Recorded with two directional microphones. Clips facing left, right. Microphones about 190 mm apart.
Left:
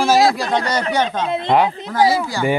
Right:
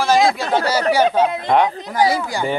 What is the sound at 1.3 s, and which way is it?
Speech, 25° left (ahead or behind).